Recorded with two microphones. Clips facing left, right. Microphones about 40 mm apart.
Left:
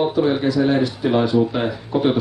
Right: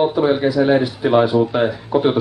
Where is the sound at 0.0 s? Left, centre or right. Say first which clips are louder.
Right 2 dB; centre.